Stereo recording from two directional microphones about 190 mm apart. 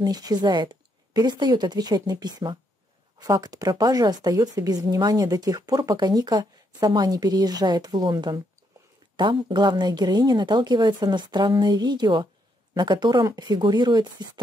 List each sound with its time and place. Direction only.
0.0 s speech: 20° right (ahead or behind)